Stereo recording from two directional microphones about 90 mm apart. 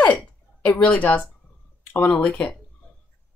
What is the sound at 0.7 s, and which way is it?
Speech, 15° left (ahead or behind).